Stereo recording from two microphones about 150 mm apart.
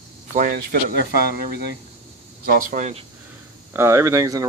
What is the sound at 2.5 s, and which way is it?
Speech, 65° right (ahead or behind).